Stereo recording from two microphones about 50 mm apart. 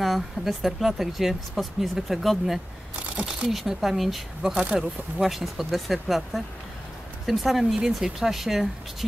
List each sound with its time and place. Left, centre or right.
0.0 s speech: centre
3.0 s speech: right
3.5 s speech: centre
4.4 s speech: centre